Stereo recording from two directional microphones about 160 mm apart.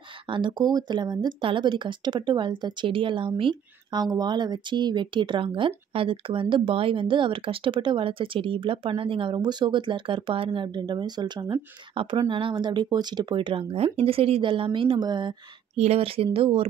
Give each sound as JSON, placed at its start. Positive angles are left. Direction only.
{"t": 0.3, "sound": "speech", "side_deg": -30}